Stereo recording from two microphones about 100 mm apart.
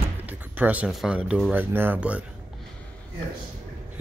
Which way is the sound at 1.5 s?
20° right (ahead or behind).